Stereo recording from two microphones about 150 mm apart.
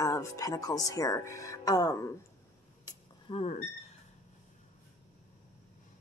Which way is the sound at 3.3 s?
40° left (ahead or behind).